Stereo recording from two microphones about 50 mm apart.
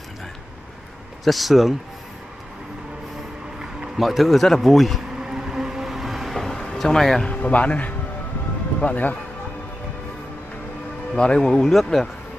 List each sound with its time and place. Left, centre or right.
1.2 s speech: centre
3.5 s speech: centre
5.2 s vehicle: centre
7.2 s a man's voice: left
11.1 s speech: centre
11.6 s speech: centre